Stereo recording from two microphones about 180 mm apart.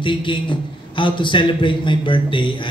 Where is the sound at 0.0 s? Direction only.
25° left (ahead or behind).